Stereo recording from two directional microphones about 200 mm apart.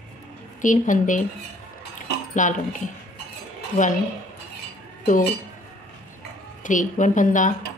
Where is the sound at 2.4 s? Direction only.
40° left (ahead or behind).